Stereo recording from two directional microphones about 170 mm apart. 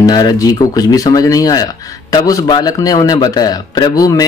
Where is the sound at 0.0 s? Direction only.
20° left (ahead or behind).